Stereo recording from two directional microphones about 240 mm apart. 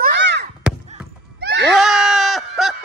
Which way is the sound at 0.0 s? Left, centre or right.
Right.